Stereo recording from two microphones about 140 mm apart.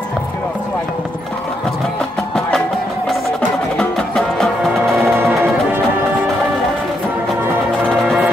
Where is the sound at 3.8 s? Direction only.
5° left (ahead or behind).